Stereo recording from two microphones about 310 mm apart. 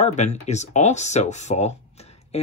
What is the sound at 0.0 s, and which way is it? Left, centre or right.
Speech, left.